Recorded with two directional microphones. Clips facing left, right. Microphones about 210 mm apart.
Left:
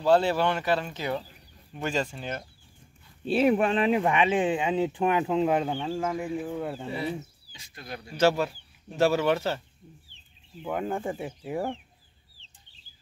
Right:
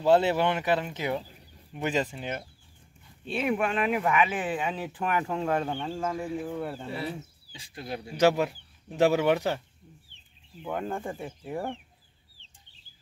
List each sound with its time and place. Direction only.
0.0 s speech: 20° right (ahead or behind)
3.3 s speech: 35° left (ahead or behind); by 6.3 s 15° left (ahead or behind)
6.3 s speech: centre (ahead or behind)
7.5 s speech: 30° right (ahead or behind)
8.0 s speech: 15° right (ahead or behind)
10.6 s speech: 5° left (ahead or behind)